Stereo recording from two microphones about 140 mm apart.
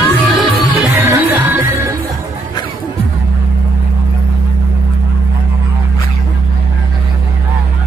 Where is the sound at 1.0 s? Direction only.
15° right (ahead or behind).